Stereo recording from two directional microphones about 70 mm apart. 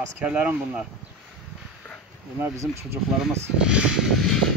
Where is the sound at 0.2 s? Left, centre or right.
Centre.